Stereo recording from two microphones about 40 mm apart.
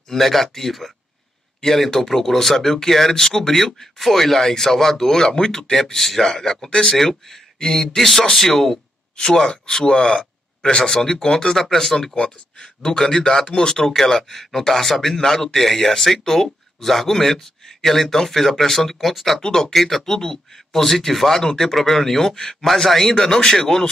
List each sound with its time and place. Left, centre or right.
0.1 s speech: centre
11.5 s speech: centre
12.2 s speech: left; by 19.4 s centre
19.4 s speech: centre